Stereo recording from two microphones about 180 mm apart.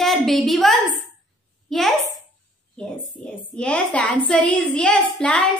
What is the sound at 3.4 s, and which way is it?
A woman's voice, 5° left (ahead or behind).